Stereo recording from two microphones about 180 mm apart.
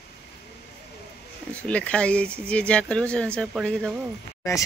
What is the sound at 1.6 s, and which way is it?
Speech, 5° left (ahead or behind).